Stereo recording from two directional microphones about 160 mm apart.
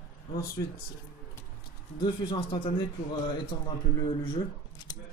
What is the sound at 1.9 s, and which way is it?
A man's voice, 30° left (ahead or behind).